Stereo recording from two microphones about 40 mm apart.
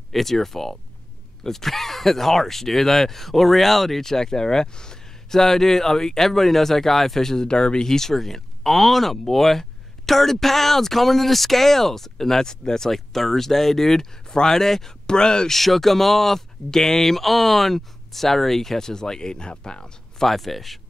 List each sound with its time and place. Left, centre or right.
0.1 s speech: centre
15.5 s speech: centre
20.2 s speech: centre